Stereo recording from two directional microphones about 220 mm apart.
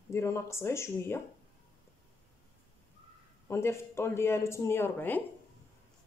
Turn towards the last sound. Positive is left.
turn(degrees=10)  # may be behind; listen again after turning